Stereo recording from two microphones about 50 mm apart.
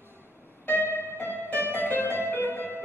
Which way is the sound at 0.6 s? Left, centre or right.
Left.